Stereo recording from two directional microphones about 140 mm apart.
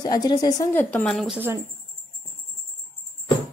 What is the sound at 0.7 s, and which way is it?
Speech, 10° left (ahead or behind).